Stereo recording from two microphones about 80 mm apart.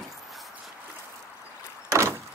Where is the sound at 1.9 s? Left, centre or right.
Right.